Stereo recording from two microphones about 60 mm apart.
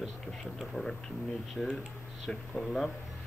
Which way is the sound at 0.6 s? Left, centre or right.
Centre.